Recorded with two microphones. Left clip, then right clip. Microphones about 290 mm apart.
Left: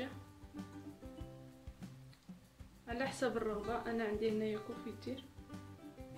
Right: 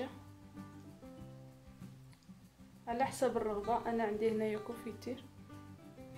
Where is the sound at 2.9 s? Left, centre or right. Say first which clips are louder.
Right 4 dB; right.